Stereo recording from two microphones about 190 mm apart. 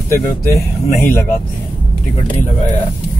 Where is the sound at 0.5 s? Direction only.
15° left (ahead or behind).